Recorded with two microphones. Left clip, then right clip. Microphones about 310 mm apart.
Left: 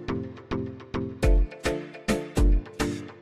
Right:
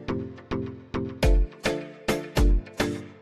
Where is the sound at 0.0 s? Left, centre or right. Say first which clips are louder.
Right 1 dB; centre.